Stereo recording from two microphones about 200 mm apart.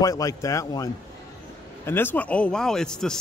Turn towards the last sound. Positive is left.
turn(degrees=5)  # may be behind; listen again after turning